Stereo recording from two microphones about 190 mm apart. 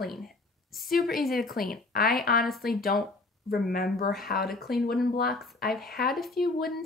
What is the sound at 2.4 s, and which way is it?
Speech, centre (ahead or behind).